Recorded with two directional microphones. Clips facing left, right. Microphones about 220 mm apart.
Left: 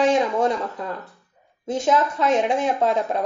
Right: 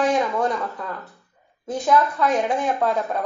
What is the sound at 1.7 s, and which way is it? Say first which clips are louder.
Speech: even; 25° left (ahead or behind).